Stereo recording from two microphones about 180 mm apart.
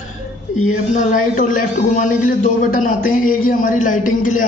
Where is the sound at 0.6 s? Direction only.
40° left (ahead or behind).